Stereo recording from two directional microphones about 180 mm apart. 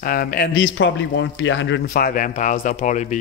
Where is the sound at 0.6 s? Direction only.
90° left.